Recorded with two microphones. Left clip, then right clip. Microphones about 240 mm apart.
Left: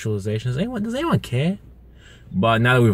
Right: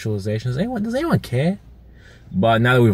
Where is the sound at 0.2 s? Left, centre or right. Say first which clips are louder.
Right 2 dB; centre.